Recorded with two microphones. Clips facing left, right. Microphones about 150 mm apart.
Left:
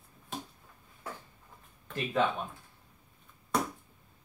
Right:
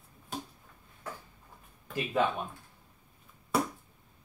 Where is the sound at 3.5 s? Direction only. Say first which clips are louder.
Right 2 dB; 5° right (ahead or behind).